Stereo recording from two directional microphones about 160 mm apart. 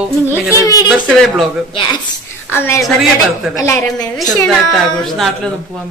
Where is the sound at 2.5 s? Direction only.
15° left (ahead or behind).